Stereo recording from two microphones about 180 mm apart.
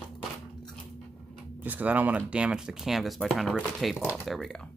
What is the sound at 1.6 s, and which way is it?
Speech, 10° right (ahead or behind).